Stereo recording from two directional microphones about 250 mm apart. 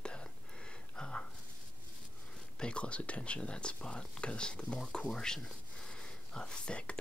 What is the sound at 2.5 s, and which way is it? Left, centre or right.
Speech, centre.